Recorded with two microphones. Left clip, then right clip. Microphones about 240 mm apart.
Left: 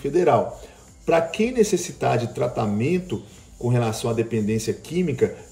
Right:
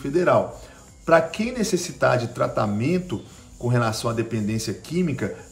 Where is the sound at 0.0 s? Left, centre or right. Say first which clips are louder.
Left 1 dB; centre.